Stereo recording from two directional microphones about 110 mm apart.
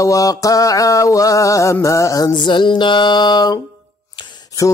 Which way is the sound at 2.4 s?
45° left (ahead or behind).